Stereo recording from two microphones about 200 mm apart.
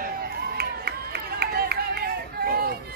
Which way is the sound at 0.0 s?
50° right (ahead or behind).